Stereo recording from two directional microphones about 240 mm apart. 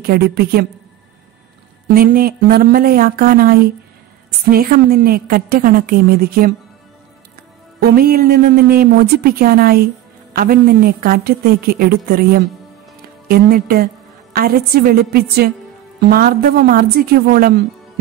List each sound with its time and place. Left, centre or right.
0.0 s a woman's voice: right
2.0 s a woman's voice: right
7.8 s a woman's voice: right